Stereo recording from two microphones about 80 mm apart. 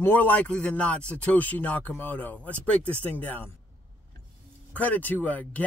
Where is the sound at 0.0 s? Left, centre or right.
Left.